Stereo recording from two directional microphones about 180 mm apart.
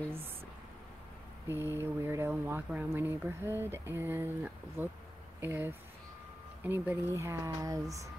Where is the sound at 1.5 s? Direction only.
15° right (ahead or behind).